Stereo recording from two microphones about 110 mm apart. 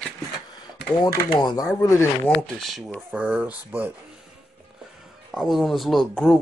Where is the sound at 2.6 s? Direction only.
Centre (ahead or behind).